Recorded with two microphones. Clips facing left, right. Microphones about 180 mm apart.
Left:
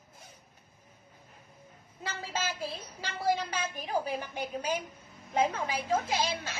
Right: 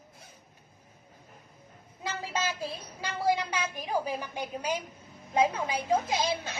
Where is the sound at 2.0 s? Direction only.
15° right (ahead or behind).